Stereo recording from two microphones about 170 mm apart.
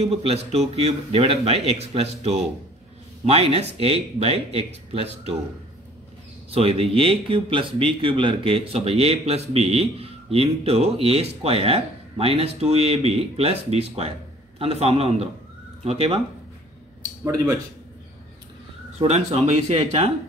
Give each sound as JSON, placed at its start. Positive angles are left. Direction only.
{"t": 0.0, "sound": "speech", "side_deg": -35}
{"t": 6.5, "sound": "speech", "side_deg": -35}
{"t": 17.0, "sound": "speech", "side_deg": -20}
{"t": 18.9, "sound": "speech", "side_deg": -40}